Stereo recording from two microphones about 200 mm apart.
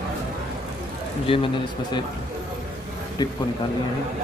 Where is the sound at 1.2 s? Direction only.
25° left (ahead or behind).